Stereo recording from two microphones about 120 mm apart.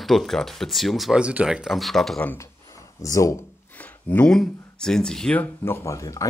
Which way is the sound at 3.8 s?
15° left (ahead or behind).